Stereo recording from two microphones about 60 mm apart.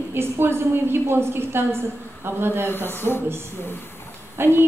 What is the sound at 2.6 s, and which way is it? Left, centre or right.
Speech, left.